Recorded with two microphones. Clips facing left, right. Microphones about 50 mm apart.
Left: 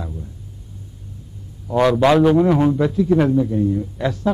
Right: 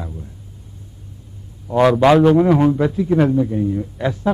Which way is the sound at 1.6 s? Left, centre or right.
Centre.